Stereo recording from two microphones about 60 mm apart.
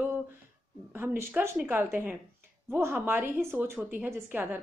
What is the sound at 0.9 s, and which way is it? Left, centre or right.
Speech, right.